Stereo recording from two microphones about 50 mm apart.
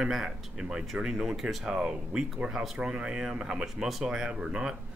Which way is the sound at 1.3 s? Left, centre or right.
Centre.